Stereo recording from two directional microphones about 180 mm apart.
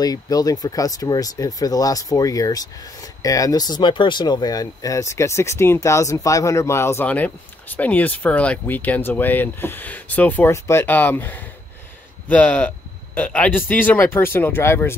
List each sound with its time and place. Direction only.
0.0 s speech: 20° left (ahead or behind)